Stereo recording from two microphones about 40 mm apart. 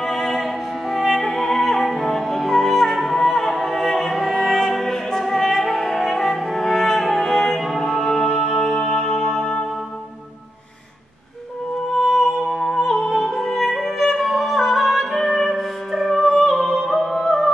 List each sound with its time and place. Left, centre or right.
0.0 s music: centre
3.2 s music: centre
11.9 s music: centre